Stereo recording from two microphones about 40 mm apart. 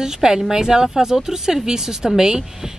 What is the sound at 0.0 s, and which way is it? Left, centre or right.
Speech, centre.